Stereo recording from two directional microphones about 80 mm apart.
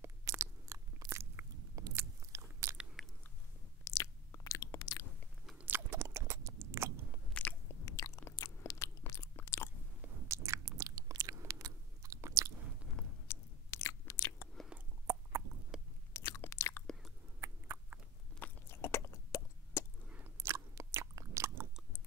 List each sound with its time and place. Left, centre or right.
0.4 s biting: right
3.8 s chewing: left
5.9 s a sound: right
7.3 s biting: centre
7.8 s chewing: left
8.6 s biting: left
10.2 s chewing: right
13.3 s biting: left
14.7 s a sound: centre
15.7 s biting: centre
16.1 s chewing: left
17.4 s a sound: right
18.4 s a sound: left
20.3 s biting: right